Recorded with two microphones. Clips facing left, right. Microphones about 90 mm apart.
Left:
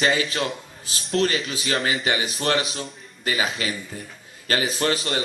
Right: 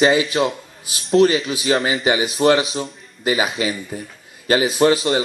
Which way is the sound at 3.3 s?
15° right (ahead or behind).